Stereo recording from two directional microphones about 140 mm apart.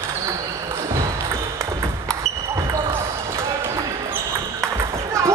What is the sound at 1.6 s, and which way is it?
Ping, 20° right (ahead or behind).